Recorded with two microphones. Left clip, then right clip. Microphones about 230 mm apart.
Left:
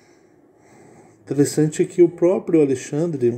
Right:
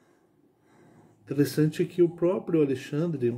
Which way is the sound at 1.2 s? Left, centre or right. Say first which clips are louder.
Left 7 dB; centre.